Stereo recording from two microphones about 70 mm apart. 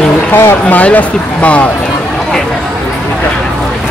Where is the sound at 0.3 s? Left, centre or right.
Left.